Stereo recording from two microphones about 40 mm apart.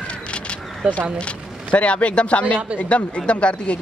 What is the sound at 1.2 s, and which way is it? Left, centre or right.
Speech, left.